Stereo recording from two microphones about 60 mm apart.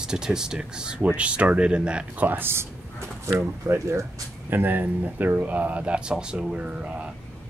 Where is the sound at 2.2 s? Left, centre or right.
Right.